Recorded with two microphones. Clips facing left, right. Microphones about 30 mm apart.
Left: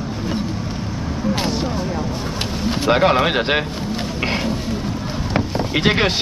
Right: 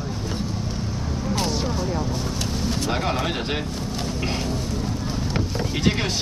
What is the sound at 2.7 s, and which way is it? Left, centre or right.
Speech, left.